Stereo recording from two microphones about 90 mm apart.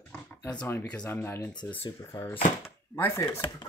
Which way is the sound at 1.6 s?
70° left (ahead or behind).